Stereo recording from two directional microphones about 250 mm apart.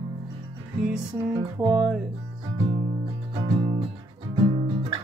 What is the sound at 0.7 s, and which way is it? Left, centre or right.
Music, centre.